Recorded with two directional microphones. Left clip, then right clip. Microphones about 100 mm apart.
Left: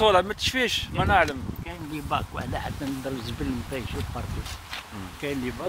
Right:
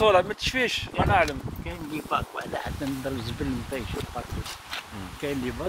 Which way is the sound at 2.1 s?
45° left (ahead or behind).